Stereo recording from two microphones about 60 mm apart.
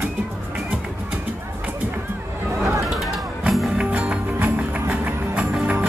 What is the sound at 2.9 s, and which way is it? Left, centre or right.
Music, centre.